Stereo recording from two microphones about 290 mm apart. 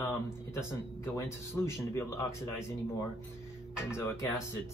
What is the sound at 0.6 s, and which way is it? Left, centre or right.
A man's voice, centre.